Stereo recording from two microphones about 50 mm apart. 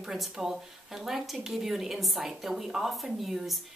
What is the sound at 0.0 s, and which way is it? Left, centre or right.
Speech, centre.